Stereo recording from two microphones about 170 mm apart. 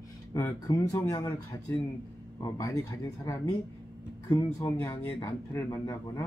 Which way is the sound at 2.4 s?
20° left (ahead or behind).